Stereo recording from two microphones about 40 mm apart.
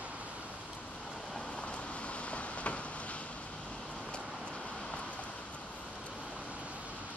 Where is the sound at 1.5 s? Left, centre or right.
Left.